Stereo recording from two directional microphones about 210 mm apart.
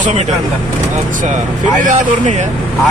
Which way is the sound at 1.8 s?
35° right (ahead or behind).